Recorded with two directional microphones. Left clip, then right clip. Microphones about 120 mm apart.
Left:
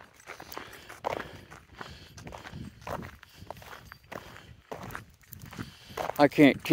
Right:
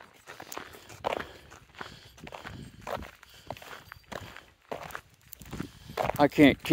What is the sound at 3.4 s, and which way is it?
Walk, centre (ahead or behind).